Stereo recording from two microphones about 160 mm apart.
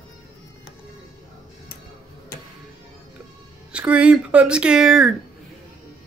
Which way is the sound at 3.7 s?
10° right (ahead or behind).